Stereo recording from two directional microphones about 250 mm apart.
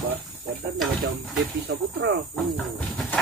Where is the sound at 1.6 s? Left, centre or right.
Right.